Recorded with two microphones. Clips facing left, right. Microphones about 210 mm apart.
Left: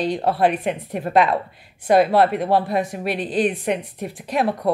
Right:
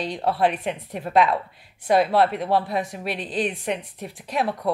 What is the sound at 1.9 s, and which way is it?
Speech, centre (ahead or behind).